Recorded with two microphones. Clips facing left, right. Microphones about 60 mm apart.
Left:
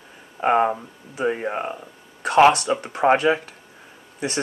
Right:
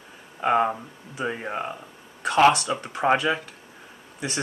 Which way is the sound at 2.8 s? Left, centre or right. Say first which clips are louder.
Left 4 dB; centre.